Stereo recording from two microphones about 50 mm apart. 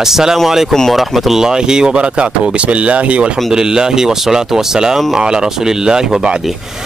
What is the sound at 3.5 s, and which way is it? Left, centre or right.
Speech, centre.